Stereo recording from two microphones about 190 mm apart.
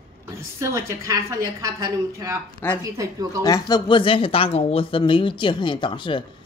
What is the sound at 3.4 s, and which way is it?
Speech, 20° left (ahead or behind).